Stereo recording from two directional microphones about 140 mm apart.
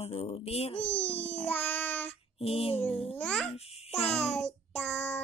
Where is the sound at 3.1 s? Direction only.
10° left (ahead or behind).